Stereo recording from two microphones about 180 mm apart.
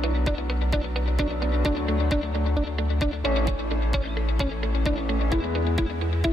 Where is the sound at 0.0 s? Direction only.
Centre (ahead or behind).